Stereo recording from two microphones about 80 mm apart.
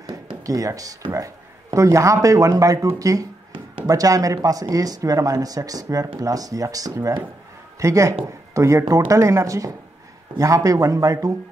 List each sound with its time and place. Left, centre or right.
0.5 s speech: right